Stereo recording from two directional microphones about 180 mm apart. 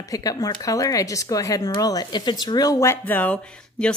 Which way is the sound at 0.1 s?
20° left (ahead or behind).